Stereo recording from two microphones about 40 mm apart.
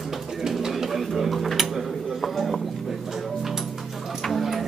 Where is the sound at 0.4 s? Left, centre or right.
Centre.